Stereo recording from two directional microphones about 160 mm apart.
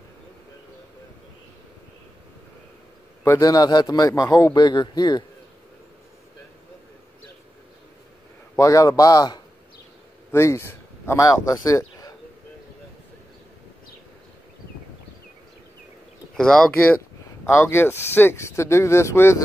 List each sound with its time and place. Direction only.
3.3 s a man's voice: 25° left (ahead or behind)
8.5 s a man's voice: 20° left (ahead or behind)
16.3 s speech: 5° left (ahead or behind)